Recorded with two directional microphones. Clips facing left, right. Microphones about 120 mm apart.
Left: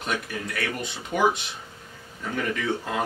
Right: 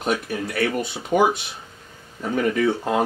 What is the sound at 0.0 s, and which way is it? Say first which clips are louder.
Speech: right 6 dB; 30° right (ahead or behind).